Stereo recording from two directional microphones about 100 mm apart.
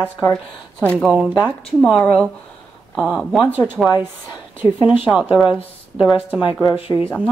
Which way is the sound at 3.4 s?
20° right (ahead or behind).